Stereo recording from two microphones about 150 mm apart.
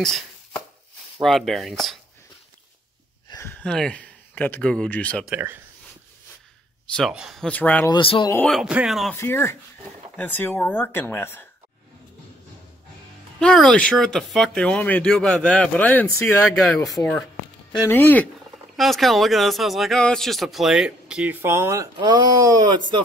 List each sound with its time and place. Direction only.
1.1 s speech: centre (ahead or behind)
3.3 s a sound: 15° left (ahead or behind)
3.6 s speech: 5° left (ahead or behind)
7.0 s speech: 5° right (ahead or behind)
7.9 s speech: 35° left (ahead or behind)
8.5 s speech: 5° right (ahead or behind)
9.1 s speech: 15° left (ahead or behind)
13.4 s speech: 5° left (ahead or behind)
17.8 s speech: 15° left (ahead or behind)
18.8 s speech: centre (ahead or behind); by 21.8 s 20° right (ahead or behind)
21.9 s speech: 30° right (ahead or behind)